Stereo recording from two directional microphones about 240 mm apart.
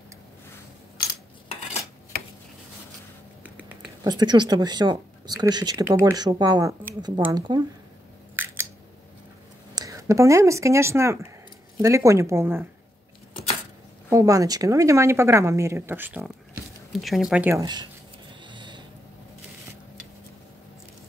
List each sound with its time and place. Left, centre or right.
1.5 s cutlery: left
3.4 s a sound: centre
4.1 s speech: centre
9.8 s speech: centre
13.3 s a sound: left
14.1 s speech: centre
18.5 s owl: centre